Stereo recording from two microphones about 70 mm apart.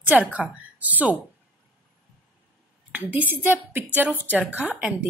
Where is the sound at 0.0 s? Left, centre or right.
Right.